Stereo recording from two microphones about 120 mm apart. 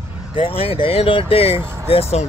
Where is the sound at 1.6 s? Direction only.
20° right (ahead or behind).